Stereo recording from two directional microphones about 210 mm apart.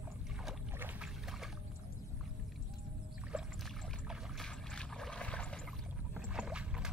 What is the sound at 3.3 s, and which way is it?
Rowboat, 5° right (ahead or behind).